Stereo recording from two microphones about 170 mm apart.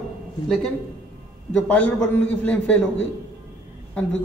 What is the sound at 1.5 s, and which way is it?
Speech, 10° left (ahead or behind).